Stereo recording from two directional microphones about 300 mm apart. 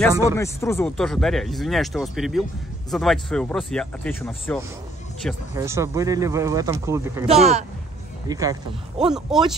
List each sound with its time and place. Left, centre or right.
0.4 s speech: centre
5.5 s speech: centre
7.2 s speech: right
8.9 s speech: centre